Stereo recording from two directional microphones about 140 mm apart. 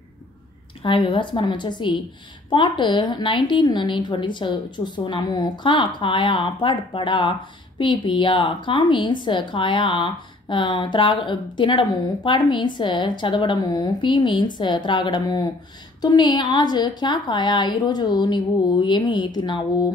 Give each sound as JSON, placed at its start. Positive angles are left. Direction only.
{"t": 0.8, "sound": "a woman's voice", "side_deg": 40}